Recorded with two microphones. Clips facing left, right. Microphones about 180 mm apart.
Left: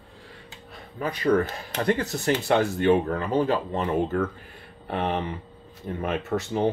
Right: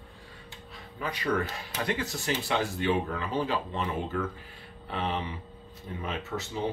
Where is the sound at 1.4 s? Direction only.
50° left (ahead or behind).